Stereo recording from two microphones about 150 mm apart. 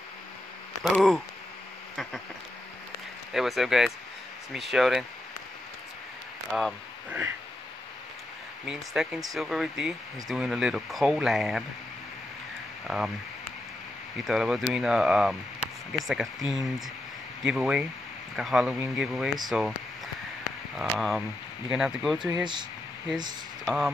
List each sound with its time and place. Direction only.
0.8 s speech: 5° left (ahead or behind)
3.3 s speech: centre (ahead or behind)
6.5 s speech: 5° right (ahead or behind)
8.6 s speech: 5° right (ahead or behind)
12.8 s speech: 5° right (ahead or behind)
14.1 s speech: 5° right (ahead or behind)
20.9 s speech: centre (ahead or behind)
22.4 s speech: 30° right (ahead or behind)
23.6 s speech: centre (ahead or behind)